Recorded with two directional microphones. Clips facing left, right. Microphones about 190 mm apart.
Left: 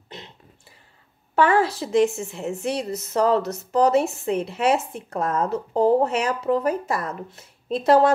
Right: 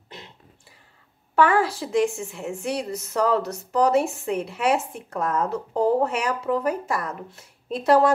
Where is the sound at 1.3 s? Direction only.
25° left (ahead or behind).